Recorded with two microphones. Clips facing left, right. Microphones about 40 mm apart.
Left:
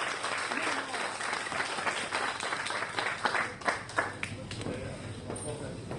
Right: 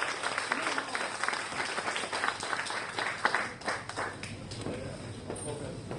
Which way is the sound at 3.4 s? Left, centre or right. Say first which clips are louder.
Left 2 dB; left.